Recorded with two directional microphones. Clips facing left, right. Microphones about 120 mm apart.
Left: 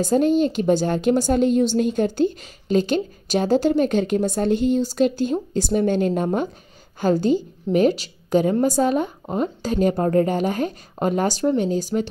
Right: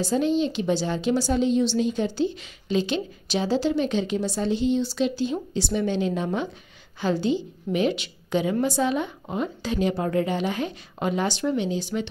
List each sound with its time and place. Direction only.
0.0 s speech: 50° left (ahead or behind)